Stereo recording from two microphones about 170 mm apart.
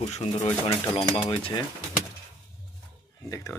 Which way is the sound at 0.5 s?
15° left (ahead or behind).